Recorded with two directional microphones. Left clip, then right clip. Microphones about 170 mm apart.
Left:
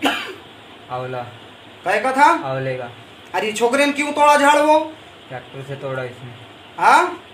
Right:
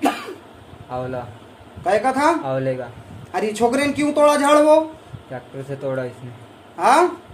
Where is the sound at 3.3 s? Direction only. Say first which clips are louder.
Left 1 dB; 70° right (ahead or behind).